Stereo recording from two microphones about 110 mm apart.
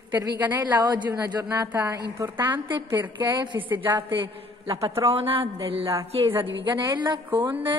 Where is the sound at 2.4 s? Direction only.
45° right (ahead or behind).